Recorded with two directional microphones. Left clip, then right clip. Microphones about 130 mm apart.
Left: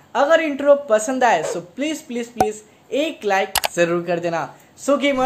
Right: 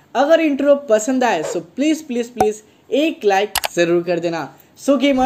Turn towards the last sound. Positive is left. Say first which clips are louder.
# right 2 dB
turn(degrees=-35)  # may be behind; listen again after turning